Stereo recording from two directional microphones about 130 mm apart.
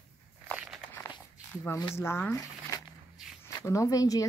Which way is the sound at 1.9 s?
20° left (ahead or behind).